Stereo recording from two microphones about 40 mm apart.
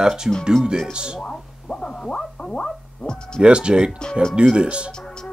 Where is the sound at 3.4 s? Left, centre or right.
Right.